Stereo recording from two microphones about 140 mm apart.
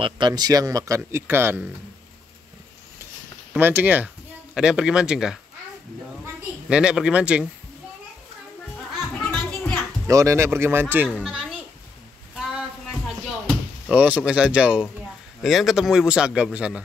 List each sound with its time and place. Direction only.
0.0 s speech: 30° right (ahead or behind)
3.5 s a man's voice: 15° right (ahead or behind)
6.7 s speech: 5° right (ahead or behind)
9.2 s children playing: 5° left (ahead or behind)
10.0 s speech: 20° right (ahead or behind)
11.1 s a child's voice: 5° right (ahead or behind)
13.8 s a man's voice: 10° right (ahead or behind)